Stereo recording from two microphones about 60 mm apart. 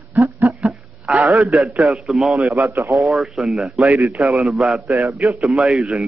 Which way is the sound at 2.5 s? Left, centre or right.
Right.